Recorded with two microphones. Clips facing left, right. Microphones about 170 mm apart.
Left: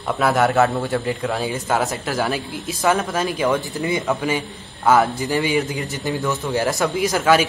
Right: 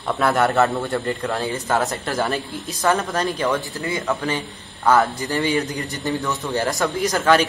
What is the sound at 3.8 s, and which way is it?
A man's voice, 15° left (ahead or behind).